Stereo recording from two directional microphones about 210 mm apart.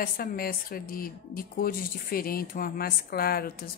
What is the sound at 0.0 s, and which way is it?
Speech, 45° left (ahead or behind).